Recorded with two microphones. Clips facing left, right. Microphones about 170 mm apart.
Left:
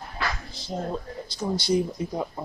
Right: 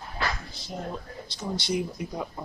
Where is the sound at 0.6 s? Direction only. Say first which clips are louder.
Left 5 dB; 30° left (ahead or behind).